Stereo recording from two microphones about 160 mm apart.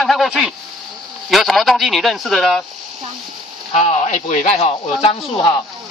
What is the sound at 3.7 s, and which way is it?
Speech, 50° left (ahead or behind).